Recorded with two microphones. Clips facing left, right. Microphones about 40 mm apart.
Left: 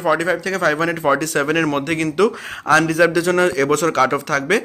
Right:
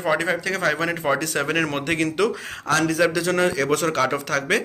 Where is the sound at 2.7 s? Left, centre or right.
Left.